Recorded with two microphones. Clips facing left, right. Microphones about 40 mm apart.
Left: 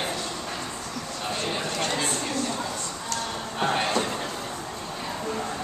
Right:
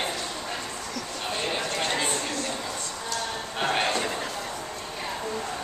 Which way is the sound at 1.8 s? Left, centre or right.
Centre.